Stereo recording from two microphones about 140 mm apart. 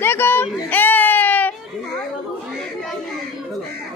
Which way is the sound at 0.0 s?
15° left (ahead or behind).